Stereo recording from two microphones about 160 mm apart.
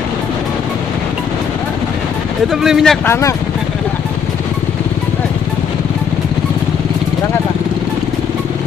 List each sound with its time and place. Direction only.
2.5 s speech: centre (ahead or behind)
3.1 s speech: 20° left (ahead or behind)